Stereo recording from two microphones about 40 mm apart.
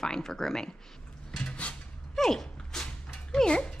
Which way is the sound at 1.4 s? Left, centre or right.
Left.